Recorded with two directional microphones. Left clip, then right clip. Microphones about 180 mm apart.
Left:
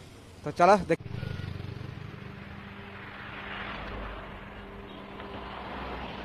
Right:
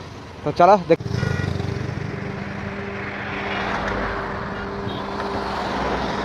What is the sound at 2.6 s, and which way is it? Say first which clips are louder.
Vehicle: right 14 dB; 60° right (ahead or behind).